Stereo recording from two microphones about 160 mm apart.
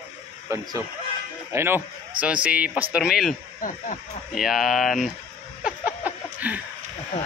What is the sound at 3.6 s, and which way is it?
Speech, 55° left (ahead or behind).